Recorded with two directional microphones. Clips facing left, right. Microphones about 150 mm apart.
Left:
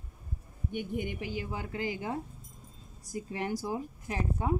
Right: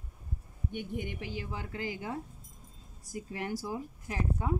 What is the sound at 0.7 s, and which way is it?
A woman's voice, 15° left (ahead or behind).